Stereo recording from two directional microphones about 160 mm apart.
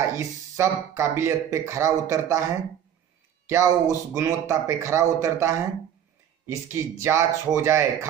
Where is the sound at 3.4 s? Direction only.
20° right (ahead or behind).